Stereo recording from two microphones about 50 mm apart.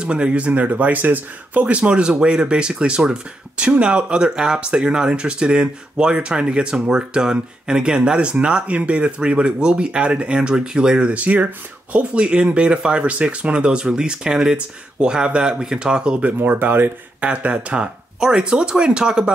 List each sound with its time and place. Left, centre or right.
0.0 s speech: right
16.3 s speech: right
17.2 s speech: right